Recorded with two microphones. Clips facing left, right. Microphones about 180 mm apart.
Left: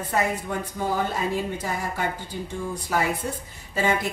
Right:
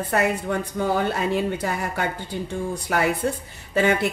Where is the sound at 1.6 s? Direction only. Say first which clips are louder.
Right 2 dB; 65° right (ahead or behind).